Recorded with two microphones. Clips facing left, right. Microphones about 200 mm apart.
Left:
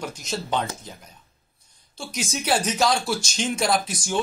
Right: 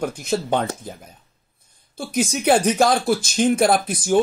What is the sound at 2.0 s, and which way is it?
Speech, 55° right (ahead or behind).